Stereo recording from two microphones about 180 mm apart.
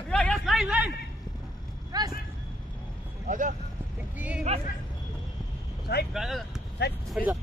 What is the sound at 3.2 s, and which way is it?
Speech, 45° right (ahead or behind).